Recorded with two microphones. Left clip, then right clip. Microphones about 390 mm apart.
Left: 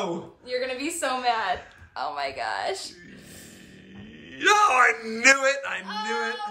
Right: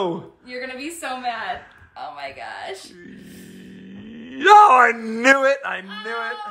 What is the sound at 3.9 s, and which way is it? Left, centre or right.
A man's voice, centre.